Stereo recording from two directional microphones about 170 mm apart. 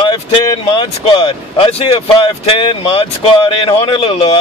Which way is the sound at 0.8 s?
25° left (ahead or behind).